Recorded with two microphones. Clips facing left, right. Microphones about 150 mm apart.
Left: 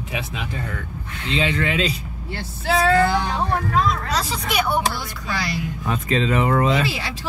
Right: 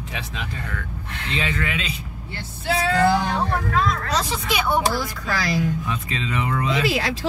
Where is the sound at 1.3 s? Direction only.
25° left (ahead or behind).